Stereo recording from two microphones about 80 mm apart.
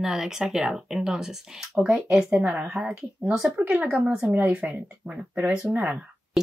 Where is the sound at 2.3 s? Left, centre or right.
Centre.